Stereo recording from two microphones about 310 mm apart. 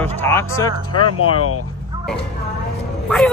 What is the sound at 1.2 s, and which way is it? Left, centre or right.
Speech, left.